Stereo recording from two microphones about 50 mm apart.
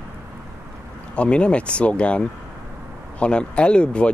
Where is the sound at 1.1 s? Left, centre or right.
Left.